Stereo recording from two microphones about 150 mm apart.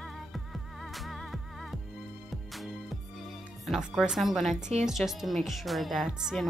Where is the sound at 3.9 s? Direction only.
Centre (ahead or behind).